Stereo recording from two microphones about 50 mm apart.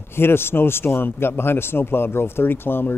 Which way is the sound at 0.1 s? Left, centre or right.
Left.